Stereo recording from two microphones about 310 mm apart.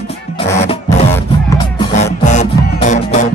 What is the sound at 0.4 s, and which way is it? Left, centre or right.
Music, centre.